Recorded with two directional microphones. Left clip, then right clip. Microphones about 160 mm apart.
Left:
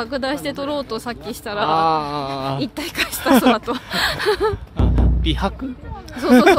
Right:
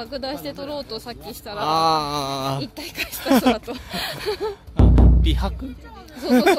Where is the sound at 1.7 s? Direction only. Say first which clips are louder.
Left 1 dB; 30° right (ahead or behind).